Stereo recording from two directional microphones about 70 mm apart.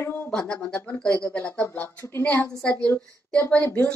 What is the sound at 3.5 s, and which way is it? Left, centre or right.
Speech, left.